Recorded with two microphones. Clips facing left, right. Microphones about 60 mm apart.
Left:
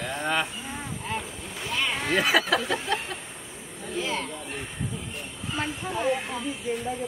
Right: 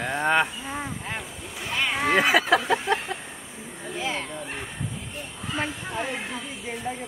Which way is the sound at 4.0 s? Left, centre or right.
Right.